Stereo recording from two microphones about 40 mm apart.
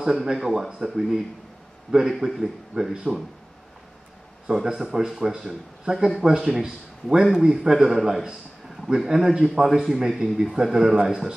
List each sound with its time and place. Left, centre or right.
0.0 s speech: centre
4.8 s a man's voice: centre